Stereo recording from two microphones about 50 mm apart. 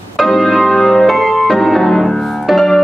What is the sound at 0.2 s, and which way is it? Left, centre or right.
Music, centre.